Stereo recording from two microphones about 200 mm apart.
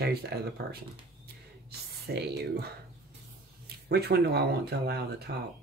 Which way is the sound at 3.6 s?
50° right (ahead or behind).